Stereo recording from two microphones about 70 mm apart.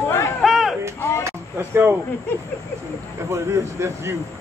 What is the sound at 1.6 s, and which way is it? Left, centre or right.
Speech, right.